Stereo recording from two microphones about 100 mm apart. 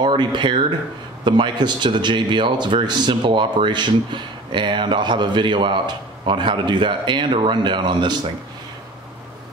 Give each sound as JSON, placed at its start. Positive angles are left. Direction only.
{"t": 0.0, "sound": "speech", "side_deg": -50}